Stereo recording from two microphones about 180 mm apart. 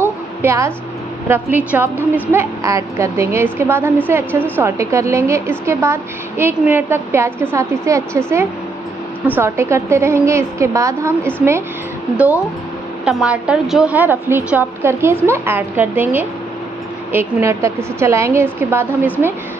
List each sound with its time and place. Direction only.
0.0 s a sound: 15° right (ahead or behind)
1.3 s a woman's voice: 10° right (ahead or behind)
9.2 s a woman's voice: 10° right (ahead or behind)
13.0 s a woman's voice: 5° right (ahead or behind)